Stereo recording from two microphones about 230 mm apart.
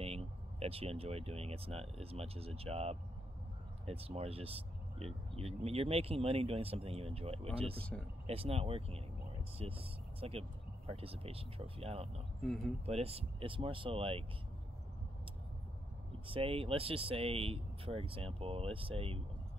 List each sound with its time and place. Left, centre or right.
0.0 s speech: right
16.3 s speech: right